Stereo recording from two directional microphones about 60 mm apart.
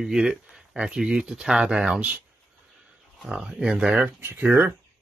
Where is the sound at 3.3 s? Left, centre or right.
Centre.